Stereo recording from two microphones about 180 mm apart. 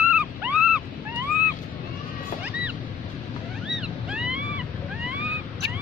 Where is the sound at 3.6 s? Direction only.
5° right (ahead or behind).